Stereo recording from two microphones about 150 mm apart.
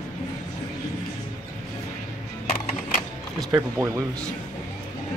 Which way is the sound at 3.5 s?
20° right (ahead or behind).